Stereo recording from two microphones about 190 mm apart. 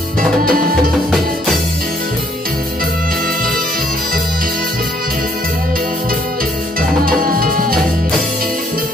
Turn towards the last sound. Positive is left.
turn(degrees=-50)  # may be behind; listen again after turning